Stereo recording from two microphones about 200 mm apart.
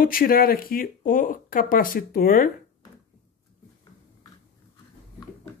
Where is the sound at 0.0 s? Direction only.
45° left (ahead or behind).